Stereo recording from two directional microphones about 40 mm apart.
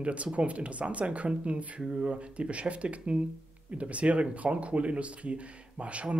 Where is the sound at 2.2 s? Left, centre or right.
Right.